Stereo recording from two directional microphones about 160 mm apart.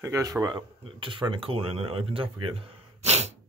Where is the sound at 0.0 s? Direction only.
20° right (ahead or behind); by 3.3 s 45° right (ahead or behind).